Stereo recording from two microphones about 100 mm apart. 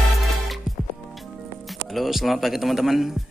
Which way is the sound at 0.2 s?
Centre (ahead or behind).